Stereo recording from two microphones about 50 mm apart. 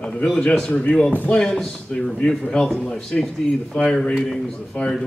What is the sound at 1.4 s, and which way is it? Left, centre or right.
A man's voice, centre.